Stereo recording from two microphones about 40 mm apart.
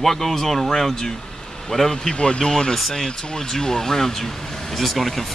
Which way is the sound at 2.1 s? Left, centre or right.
Left.